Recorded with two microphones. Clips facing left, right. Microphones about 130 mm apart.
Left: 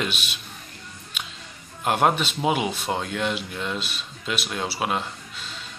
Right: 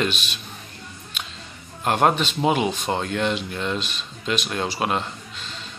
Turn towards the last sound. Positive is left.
turn(degrees=10)  # may be behind; listen again after turning